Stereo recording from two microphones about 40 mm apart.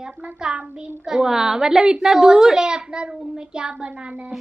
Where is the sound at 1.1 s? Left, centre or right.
Centre.